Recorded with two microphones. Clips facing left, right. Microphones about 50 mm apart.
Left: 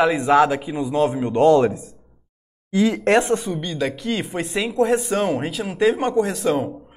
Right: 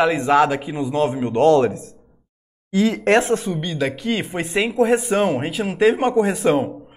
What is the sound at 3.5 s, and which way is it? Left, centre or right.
A woman's voice, centre.